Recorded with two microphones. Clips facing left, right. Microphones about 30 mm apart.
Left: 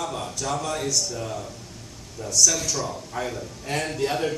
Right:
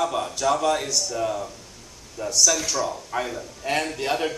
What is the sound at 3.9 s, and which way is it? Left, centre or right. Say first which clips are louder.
Speech: even; centre.